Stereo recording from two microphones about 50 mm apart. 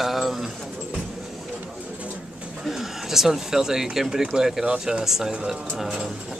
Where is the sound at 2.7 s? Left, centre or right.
Centre.